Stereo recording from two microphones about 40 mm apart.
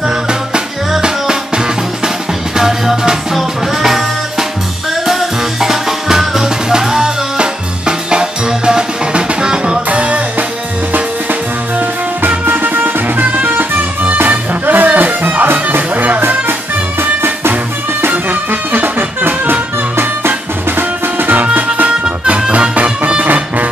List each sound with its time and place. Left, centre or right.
0.9 s music: centre
9.8 s music: right
12.4 s music: right
21.8 s music: right